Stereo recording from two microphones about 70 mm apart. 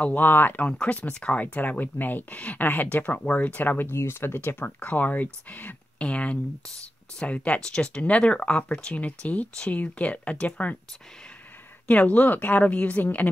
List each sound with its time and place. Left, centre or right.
0.0 s speech: left
11.9 s speech: left